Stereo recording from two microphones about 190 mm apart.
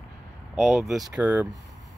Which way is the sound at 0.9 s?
5° right (ahead or behind).